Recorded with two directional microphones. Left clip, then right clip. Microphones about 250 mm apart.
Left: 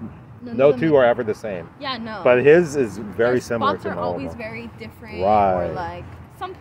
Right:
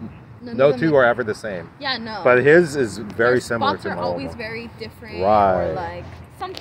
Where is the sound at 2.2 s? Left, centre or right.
Centre.